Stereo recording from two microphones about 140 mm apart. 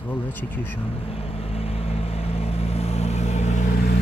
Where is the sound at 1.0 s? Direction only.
45° left (ahead or behind).